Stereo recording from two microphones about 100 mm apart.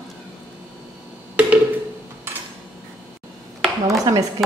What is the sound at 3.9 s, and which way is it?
Speech, 35° right (ahead or behind).